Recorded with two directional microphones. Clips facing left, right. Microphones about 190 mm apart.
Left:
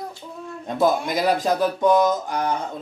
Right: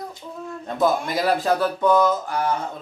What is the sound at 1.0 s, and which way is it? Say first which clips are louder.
A child's voice: left 1 dB; 15° left (ahead or behind).